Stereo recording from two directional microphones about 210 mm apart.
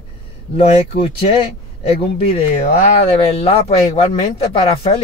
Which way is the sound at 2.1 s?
30° left (ahead or behind).